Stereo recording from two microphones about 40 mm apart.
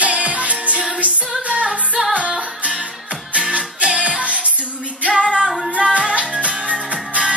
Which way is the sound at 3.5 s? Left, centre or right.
Right.